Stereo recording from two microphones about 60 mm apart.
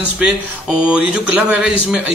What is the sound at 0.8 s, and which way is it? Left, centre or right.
Speech, centre.